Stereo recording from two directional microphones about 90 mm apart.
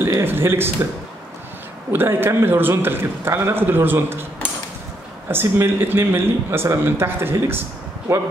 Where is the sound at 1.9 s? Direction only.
25° right (ahead or behind).